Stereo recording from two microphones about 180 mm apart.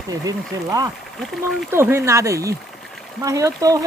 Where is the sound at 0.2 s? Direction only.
20° right (ahead or behind).